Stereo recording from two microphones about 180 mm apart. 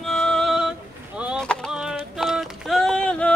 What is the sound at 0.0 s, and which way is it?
Music, 5° left (ahead or behind).